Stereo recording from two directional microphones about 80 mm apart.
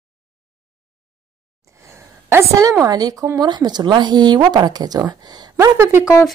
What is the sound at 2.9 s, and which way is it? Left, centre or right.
Speech, right.